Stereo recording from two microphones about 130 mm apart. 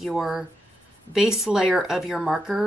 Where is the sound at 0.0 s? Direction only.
Centre (ahead or behind).